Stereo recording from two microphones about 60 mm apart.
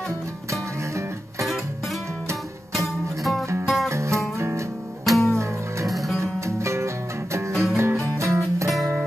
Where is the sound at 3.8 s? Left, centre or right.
Right.